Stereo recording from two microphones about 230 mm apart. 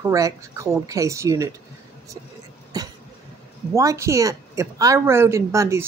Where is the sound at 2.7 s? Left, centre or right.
Centre.